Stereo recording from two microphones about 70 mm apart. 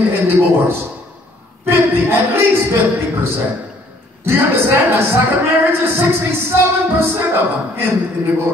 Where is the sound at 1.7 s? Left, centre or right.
Right.